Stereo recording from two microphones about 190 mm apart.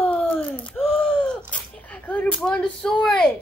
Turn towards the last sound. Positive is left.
turn(degrees=5)  # may be behind; listen again after turning